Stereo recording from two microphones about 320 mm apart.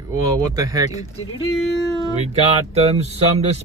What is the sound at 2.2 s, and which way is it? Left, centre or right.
Speech, centre.